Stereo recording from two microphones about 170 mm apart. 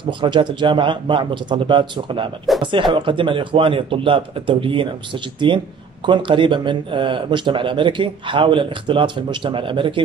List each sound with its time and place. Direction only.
0.0 s speech: 30° right (ahead or behind)